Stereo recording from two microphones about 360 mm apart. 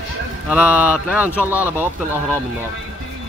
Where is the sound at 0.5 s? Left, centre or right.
Centre.